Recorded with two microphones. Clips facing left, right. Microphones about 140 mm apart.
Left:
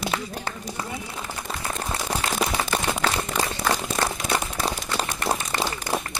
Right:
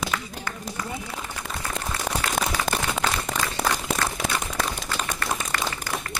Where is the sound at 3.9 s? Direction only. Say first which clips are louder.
Left 2 dB; 35° left (ahead or behind).